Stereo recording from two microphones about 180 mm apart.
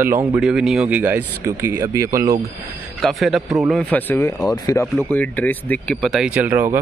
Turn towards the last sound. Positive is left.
turn(degrees=-10)  # may be behind; listen again after turning